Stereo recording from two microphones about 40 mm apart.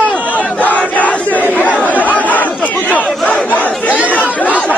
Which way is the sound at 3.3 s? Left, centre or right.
Left.